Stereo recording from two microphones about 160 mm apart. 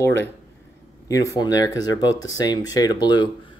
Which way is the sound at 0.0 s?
15° left (ahead or behind).